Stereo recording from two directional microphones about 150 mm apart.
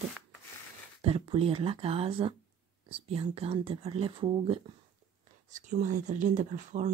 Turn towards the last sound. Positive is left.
turn(degrees=-55)  # may be behind; listen again after turning